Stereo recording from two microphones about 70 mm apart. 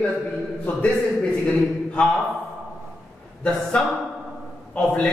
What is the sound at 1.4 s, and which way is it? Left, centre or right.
Speech, centre.